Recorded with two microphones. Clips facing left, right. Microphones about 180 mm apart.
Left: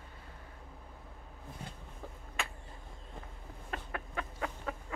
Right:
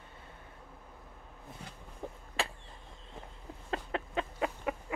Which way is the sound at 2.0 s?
20° right (ahead or behind).